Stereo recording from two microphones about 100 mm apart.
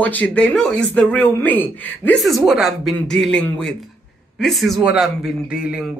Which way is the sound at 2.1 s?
Centre (ahead or behind).